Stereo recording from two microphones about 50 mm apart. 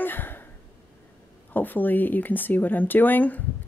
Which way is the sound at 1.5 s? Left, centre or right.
Left.